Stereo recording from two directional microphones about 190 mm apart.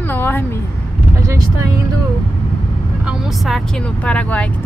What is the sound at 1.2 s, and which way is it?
Speech, 15° right (ahead or behind).